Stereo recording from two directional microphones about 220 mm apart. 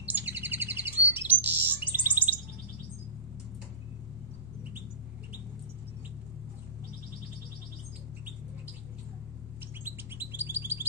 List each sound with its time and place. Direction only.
0.3 s bird: 10° right (ahead or behind)
9.8 s chirp: 10° right (ahead or behind)